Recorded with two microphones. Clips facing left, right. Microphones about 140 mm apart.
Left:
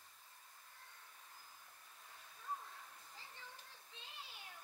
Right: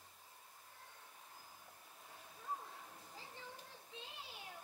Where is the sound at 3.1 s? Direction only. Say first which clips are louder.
Right 5 dB; 10° right (ahead or behind).